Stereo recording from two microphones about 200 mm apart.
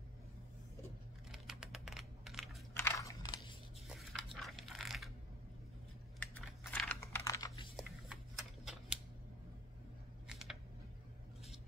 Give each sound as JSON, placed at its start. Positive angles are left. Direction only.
{"t": 1.3, "sound": "computer keyboard", "side_deg": -5}
{"t": 2.7, "sound": "biting", "side_deg": 15}
{"t": 3.9, "sound": "biting", "side_deg": 0}
{"t": 6.1, "sound": "computer keyboard", "side_deg": 5}
{"t": 7.7, "sound": "shuffling cards", "side_deg": 0}
{"t": 10.2, "sound": "a sound", "side_deg": 0}